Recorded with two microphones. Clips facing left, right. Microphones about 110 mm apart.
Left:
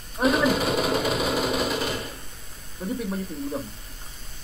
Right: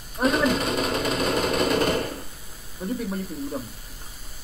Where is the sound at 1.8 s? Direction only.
55° right (ahead or behind).